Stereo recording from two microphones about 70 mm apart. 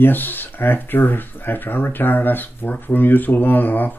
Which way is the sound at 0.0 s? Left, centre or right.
Left.